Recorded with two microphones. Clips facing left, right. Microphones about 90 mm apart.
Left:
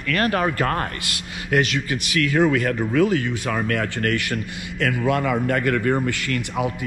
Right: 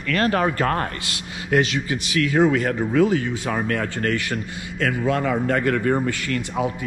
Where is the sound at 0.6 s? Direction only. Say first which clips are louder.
Right 1 dB; 15° right (ahead or behind).